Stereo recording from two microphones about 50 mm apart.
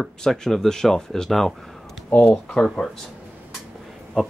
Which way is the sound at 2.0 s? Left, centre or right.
Left.